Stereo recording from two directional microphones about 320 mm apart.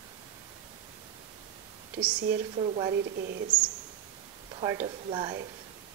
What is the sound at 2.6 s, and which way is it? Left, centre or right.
Speech, centre.